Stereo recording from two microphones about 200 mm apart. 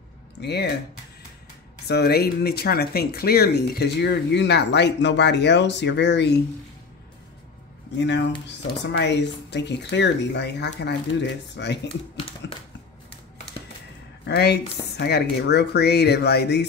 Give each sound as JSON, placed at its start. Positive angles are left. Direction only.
{"t": 0.4, "sound": "speech", "side_deg": 55}
{"t": 1.9, "sound": "speech", "side_deg": 50}
{"t": 8.5, "sound": "speech", "side_deg": 60}
{"t": 14.2, "sound": "speech", "side_deg": 55}